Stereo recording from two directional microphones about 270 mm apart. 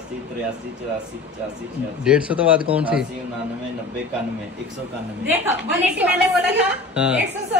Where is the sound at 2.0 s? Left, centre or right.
Centre.